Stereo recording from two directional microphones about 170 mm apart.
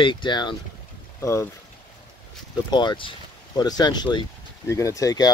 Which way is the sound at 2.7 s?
25° left (ahead or behind).